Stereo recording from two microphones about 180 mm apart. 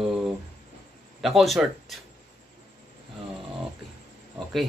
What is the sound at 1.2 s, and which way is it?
Speech, centre (ahead or behind).